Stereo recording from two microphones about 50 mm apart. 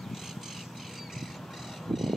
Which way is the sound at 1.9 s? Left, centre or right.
Centre.